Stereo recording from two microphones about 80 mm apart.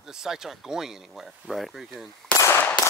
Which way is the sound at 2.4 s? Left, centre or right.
Left.